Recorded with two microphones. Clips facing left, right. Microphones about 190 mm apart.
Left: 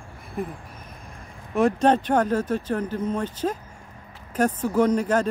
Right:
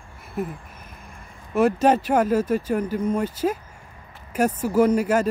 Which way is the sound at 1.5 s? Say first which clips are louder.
Right 1 dB; 5° right (ahead or behind).